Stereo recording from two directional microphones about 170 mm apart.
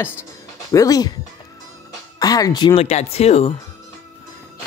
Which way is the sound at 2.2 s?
20° left (ahead or behind).